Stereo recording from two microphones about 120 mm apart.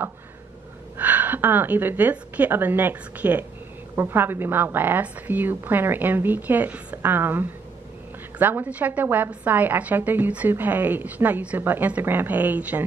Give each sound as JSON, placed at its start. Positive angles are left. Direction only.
{"t": 0.9, "sound": "a woman's voice", "side_deg": -15}